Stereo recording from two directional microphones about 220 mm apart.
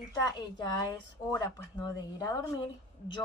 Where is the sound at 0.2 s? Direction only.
20° left (ahead or behind).